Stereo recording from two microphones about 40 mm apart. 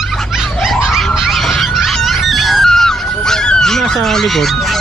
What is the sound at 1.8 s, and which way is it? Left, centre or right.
Goose, centre.